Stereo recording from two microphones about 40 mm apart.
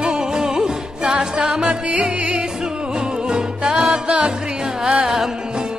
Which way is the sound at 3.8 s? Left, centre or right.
Centre.